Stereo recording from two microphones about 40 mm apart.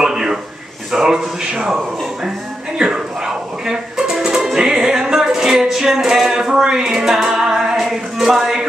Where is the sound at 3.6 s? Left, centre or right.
Centre.